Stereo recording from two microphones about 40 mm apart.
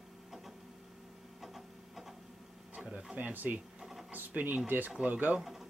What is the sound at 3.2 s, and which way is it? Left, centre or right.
Speech, right.